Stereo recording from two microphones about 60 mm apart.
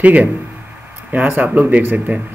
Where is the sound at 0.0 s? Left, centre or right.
Right.